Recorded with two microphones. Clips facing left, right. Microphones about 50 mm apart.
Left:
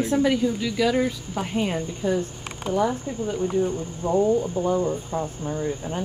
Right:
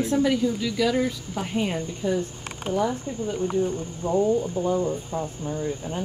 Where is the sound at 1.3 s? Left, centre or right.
Left.